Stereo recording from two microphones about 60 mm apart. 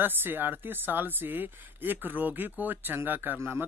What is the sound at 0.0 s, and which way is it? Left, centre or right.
A woman's voice, right.